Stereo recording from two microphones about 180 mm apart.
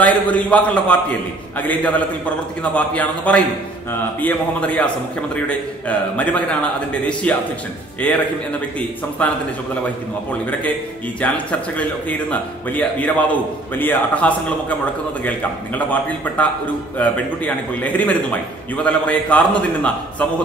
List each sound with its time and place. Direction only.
0.0 s a man's voice: 10° left (ahead or behind)
9.2 s a man's voice: 5° left (ahead or behind)
11.1 s a man's voice: 5° left (ahead or behind)